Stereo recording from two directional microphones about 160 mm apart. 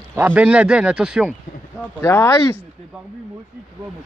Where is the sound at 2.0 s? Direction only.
15° left (ahead or behind).